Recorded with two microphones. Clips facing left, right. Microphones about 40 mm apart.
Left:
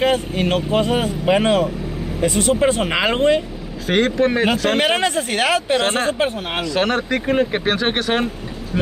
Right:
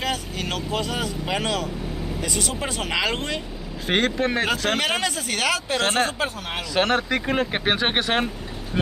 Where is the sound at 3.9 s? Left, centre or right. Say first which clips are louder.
Left 5 dB; centre.